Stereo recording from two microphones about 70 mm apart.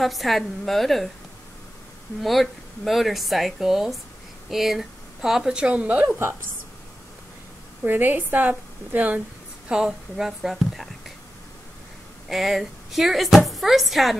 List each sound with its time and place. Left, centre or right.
0.0 s speech: centre
2.2 s speech: centre
7.8 s a woman's voice: right
9.7 s a woman's voice: centre
12.3 s speech: centre